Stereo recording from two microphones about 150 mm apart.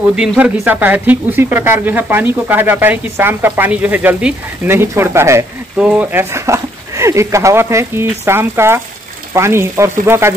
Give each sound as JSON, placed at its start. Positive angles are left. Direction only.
{"t": 0.0, "sound": "speech", "side_deg": -5}